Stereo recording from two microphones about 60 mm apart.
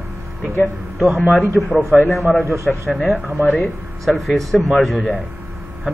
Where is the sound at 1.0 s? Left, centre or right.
Centre.